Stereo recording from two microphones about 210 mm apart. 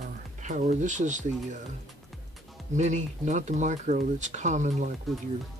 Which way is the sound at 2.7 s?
35° right (ahead or behind).